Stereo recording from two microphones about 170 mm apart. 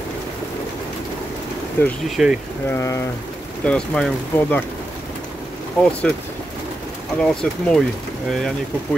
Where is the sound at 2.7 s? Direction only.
15° left (ahead or behind).